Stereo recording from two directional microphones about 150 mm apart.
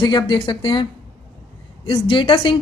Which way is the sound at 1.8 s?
35° left (ahead or behind).